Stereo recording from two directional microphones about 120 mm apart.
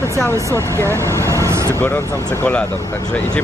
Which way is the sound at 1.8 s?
20° left (ahead or behind).